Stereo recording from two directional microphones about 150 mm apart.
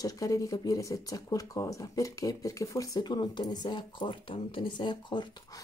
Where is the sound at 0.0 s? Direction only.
25° left (ahead or behind).